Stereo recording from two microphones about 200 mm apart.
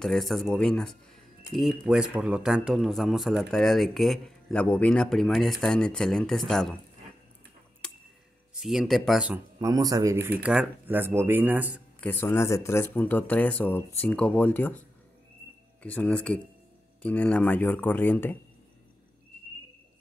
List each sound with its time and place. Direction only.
0.0 s speech: centre (ahead or behind)
7.8 s tick-tock: 5° left (ahead or behind)
8.5 s speech: centre (ahead or behind)
9.6 s speech: 15° right (ahead or behind)
12.0 s speech: 10° left (ahead or behind)
15.8 s speech: 5° left (ahead or behind)